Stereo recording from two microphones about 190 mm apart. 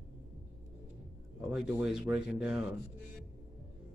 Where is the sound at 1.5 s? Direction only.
5° right (ahead or behind).